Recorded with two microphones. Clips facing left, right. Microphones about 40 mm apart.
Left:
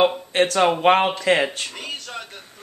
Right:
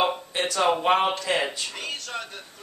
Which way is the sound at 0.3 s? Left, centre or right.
Left.